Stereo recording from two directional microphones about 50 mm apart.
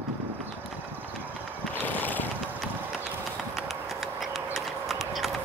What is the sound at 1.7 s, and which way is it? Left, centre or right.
Mechanisms, left.